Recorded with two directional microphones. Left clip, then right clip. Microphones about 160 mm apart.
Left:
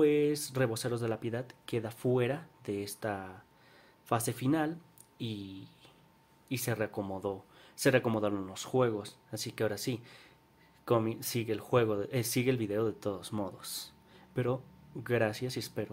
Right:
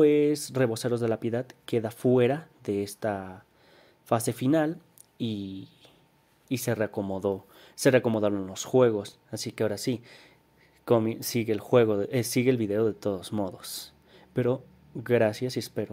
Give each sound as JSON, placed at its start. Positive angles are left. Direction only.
{"t": 0.0, "sound": "speech", "side_deg": -30}